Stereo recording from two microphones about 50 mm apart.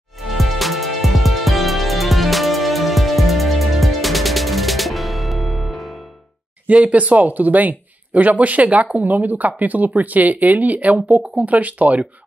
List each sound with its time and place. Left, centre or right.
0.3 s music: centre
6.7 s speech: right